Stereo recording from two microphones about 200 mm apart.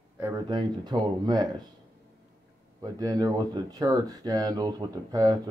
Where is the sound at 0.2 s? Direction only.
20° right (ahead or behind).